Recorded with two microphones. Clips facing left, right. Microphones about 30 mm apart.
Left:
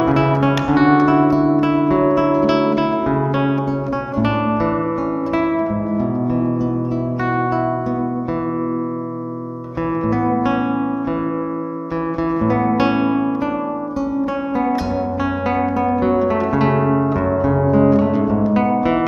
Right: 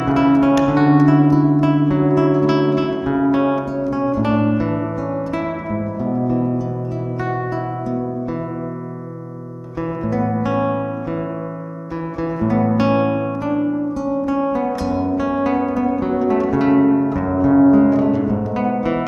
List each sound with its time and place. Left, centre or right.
0.0 s music: centre
1.6 s guitar: centre
5.3 s music: centre
10.0 s music: centre
12.2 s music: centre
12.7 s guitar: centre
15.4 s guitar: centre
16.7 s music: left
17.3 s music: centre